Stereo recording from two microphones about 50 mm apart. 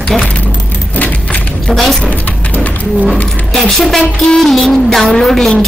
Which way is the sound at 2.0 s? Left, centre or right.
Left.